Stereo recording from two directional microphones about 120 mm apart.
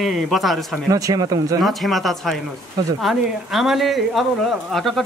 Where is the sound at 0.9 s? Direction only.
30° right (ahead or behind).